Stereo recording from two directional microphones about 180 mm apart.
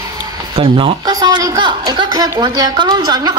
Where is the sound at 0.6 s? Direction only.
30° right (ahead or behind).